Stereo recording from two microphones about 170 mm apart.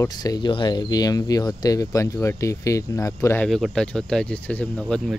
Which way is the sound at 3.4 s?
Centre (ahead or behind).